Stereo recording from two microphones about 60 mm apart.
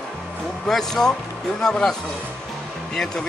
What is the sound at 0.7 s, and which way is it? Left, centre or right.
Speech, centre.